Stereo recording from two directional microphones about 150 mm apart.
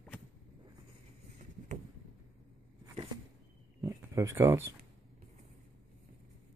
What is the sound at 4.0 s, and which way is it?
Speech, 20° right (ahead or behind).